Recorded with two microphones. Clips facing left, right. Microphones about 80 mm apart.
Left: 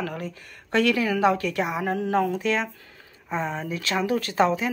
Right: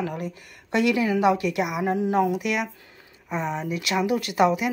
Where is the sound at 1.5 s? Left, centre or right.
Left.